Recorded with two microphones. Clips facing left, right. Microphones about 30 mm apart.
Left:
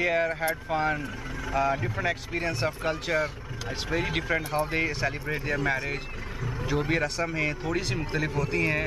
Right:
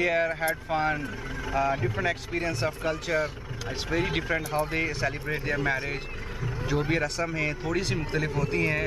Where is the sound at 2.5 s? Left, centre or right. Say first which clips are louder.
Left 1 dB; centre.